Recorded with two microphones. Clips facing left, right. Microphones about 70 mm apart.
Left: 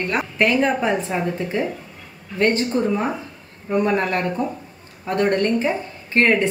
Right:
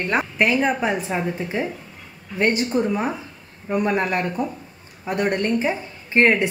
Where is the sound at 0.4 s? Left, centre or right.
Centre.